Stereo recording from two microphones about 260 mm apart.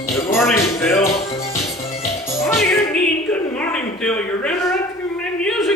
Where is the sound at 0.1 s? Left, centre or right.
Centre.